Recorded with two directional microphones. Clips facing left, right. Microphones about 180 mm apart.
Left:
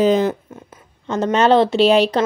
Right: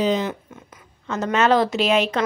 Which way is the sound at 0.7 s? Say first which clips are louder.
Left 5 dB; 30° left (ahead or behind).